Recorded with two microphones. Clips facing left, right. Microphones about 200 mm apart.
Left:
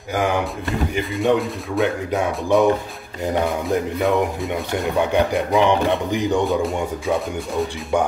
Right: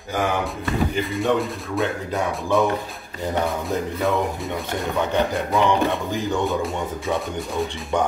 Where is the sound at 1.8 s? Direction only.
20° left (ahead or behind).